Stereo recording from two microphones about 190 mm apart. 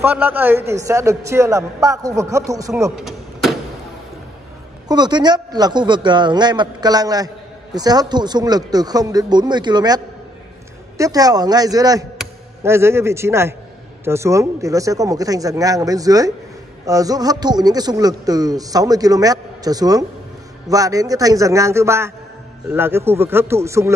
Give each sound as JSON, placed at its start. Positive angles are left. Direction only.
{"t": 0.0, "sound": "speech", "side_deg": -10}
{"t": 3.0, "sound": "a sound", "side_deg": 0}
{"t": 4.8, "sound": "speech", "side_deg": -20}